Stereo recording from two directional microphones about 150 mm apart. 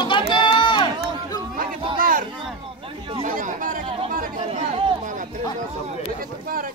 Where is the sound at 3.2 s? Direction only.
60° right (ahead or behind).